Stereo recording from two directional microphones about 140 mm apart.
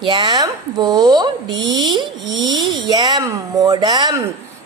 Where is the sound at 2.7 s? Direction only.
30° right (ahead or behind).